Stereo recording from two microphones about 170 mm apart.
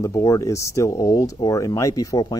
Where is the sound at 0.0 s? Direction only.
20° left (ahead or behind).